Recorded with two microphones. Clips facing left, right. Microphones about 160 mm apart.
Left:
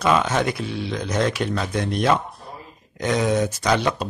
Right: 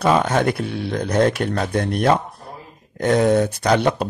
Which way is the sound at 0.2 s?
55° right (ahead or behind).